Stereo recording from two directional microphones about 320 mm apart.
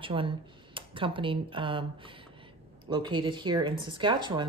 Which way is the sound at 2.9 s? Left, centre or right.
Centre.